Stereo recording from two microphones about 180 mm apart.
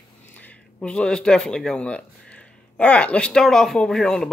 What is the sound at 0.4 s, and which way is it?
Speech, 10° left (ahead or behind).